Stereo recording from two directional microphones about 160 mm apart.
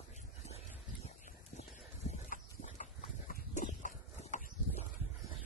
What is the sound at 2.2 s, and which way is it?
Livestock, 55° left (ahead or behind).